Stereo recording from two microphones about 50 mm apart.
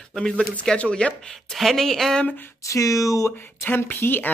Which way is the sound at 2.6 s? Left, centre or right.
Left.